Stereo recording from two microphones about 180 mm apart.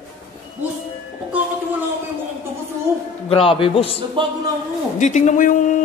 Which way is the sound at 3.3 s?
30° left (ahead or behind).